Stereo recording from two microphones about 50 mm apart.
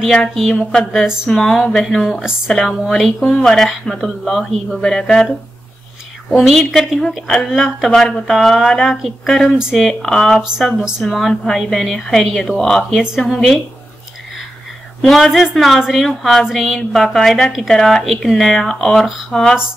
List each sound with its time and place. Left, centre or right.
0.1 s a woman's voice: centre
3.2 s speech: left
3.4 s a woman's voice: centre
6.3 s a woman's voice: centre
7.9 s a woman's voice: centre
15.0 s a woman's voice: centre